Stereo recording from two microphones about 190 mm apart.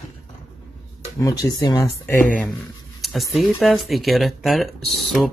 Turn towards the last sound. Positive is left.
turn(degrees=0)  # may be behind; listen again after turning